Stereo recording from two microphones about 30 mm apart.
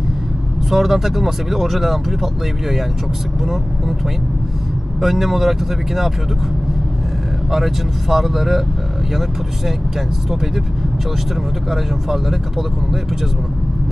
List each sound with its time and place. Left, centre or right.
0.7 s speech: centre
5.0 s speech: centre
7.5 s speech: centre
11.7 s speech: centre